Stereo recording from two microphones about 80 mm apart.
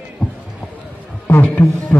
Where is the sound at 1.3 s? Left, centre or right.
Left.